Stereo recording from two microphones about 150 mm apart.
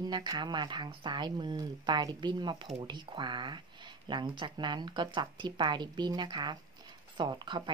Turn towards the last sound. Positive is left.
turn(degrees=-30)  # may be behind; listen again after turning